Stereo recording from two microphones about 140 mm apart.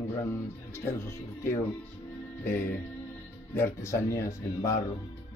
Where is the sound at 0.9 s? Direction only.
20° left (ahead or behind).